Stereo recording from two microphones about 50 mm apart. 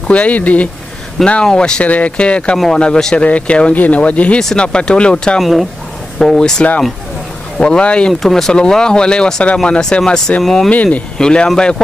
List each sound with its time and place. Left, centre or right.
0.1 s speech: left
1.2 s speech: centre
3.3 s speech: left
4.4 s speech: centre
5.4 s speech: centre
6.1 s speech: centre
7.5 s speech: centre
8.1 s speech: centre
10.4 s speech: centre
10.7 s speech: left
11.1 s speech: centre